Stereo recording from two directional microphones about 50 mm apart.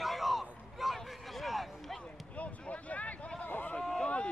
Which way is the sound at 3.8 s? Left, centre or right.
Centre.